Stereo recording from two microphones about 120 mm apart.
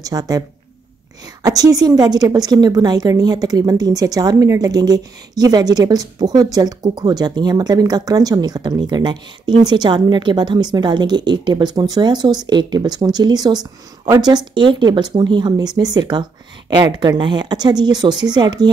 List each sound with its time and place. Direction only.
0.0 s a woman's voice: 30° right (ahead or behind)
1.4 s a woman's voice: 30° right (ahead or behind)